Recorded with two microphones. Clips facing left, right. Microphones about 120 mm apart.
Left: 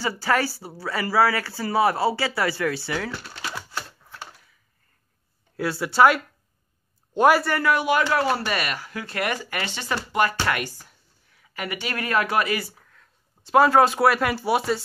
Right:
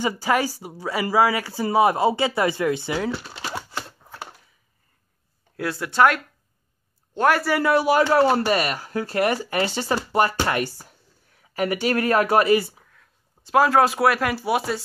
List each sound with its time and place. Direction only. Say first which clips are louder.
0.0 s speech: right 2 dB; 15° right (ahead or behind)
5.6 s a man's voice: left 1 dB; centre (ahead or behind)
7.6 s speech: right 3 dB; 35° right (ahead or behind)
12.7 s speech: right 1 dB; 5° right (ahead or behind)